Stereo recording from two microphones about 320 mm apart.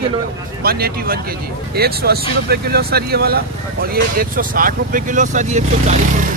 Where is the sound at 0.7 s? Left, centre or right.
Right.